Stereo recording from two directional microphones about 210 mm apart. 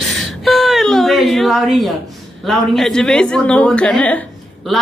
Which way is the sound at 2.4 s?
Centre (ahead or behind).